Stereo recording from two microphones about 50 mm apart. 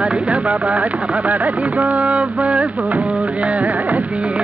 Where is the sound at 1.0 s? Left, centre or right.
Right.